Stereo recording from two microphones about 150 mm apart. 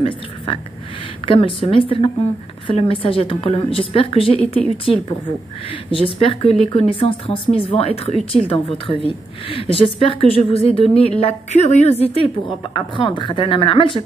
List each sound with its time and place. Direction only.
1.2 s a woman's voice: 35° left (ahead or behind)
8.2 s speech: centre (ahead or behind)
8.5 s a woman's voice: 40° left (ahead or behind)